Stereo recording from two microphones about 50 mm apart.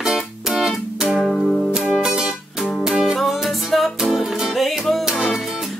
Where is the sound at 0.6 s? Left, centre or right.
Centre.